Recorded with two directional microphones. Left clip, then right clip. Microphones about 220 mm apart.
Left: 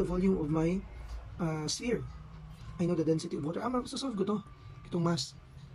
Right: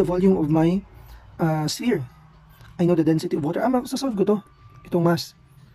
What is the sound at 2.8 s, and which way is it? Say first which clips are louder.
Speech: right 11 dB; 40° right (ahead or behind).